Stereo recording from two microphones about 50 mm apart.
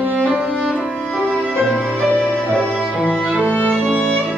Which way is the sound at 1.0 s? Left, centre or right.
Left.